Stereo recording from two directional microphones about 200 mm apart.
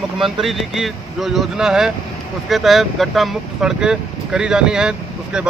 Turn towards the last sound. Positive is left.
turn(degrees=-5)  # may be behind; listen again after turning